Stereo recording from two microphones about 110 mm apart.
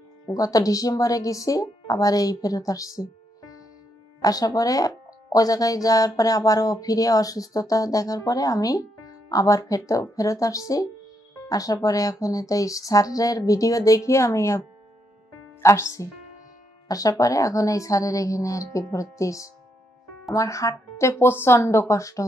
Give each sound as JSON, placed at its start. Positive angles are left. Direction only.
{"t": 0.3, "sound": "speech", "side_deg": 35}
{"t": 15.6, "sound": "a woman's voice", "side_deg": 25}